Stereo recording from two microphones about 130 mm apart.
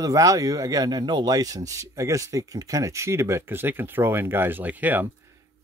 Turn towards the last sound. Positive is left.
turn(degrees=-20)  # may be behind; listen again after turning